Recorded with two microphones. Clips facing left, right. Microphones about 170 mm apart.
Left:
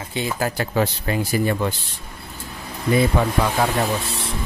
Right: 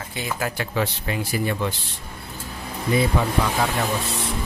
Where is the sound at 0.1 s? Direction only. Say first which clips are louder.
Left 4 dB; 30° left (ahead or behind).